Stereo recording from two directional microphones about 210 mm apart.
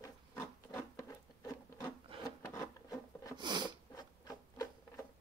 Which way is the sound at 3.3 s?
20° right (ahead or behind).